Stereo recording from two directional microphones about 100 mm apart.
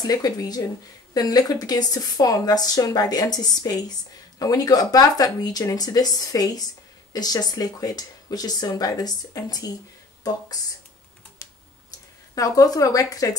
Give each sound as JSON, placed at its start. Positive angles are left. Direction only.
{"t": 0.0, "sound": "speech", "side_deg": 40}
{"t": 12.4, "sound": "speech", "side_deg": 35}